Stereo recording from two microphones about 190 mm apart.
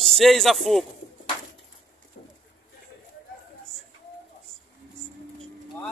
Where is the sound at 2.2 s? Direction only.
50° left (ahead or behind).